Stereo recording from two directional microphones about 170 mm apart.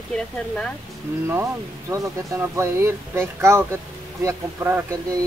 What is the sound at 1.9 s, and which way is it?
Speech, 15° right (ahead or behind).